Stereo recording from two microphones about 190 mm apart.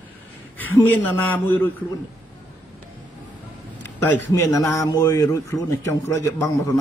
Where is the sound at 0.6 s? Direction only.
10° left (ahead or behind).